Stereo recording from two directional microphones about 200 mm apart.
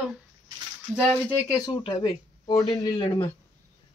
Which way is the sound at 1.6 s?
20° left (ahead or behind).